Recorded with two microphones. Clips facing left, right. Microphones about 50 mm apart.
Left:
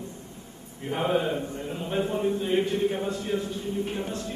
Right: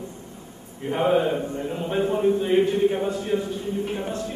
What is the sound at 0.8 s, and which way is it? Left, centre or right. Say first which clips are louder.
A man's voice: right 5 dB; centre.